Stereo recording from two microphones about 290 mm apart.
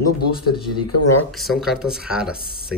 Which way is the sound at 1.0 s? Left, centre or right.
Left.